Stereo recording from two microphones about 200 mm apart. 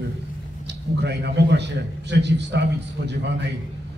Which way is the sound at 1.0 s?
55° right (ahead or behind).